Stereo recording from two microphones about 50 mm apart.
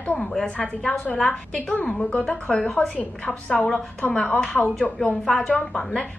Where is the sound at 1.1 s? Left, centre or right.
Centre.